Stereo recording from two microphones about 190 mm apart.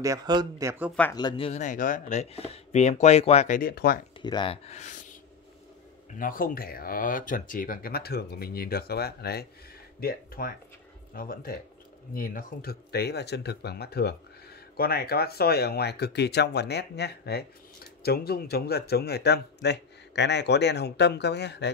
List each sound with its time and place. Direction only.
0.0 s speech: 20° right (ahead or behind)
1.1 s speech: 25° left (ahead or behind); by 4.0 s 50° left (ahead or behind)
4.2 s speech: 25° left (ahead or behind); by 5.1 s 40° left (ahead or behind)
6.1 s speech: 45° left (ahead or behind); by 21.6 s 65° left (ahead or behind)